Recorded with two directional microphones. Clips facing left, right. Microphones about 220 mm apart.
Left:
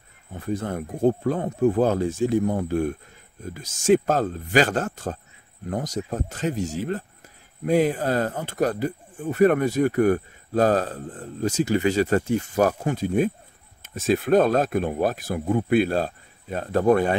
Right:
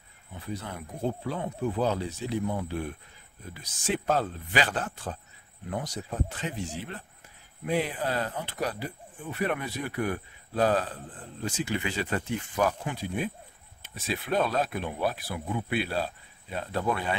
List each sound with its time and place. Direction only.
0.3 s speech: 50° left (ahead or behind)